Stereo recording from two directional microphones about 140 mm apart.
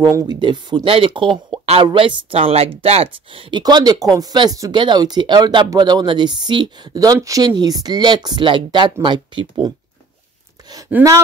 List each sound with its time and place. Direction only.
0.0 s speech: 25° right (ahead or behind)
10.9 s speech: 10° right (ahead or behind)